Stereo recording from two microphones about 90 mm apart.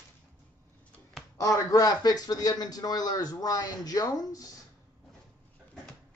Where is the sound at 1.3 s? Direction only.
40° left (ahead or behind).